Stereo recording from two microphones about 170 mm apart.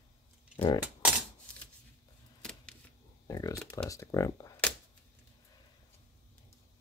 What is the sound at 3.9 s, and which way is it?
Speech, 20° left (ahead or behind).